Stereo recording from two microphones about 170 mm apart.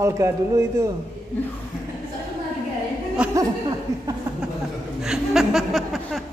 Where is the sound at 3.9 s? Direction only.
20° right (ahead or behind).